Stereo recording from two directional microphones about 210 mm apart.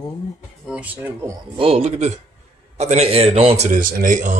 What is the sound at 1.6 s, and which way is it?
Speech, 30° right (ahead or behind).